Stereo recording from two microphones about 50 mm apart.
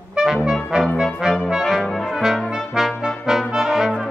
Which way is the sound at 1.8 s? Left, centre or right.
Centre.